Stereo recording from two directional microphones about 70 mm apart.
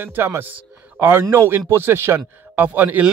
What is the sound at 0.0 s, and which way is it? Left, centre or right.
A man's voice, right.